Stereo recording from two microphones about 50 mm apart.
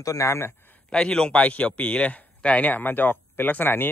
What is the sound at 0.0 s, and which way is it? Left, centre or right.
Speech, left.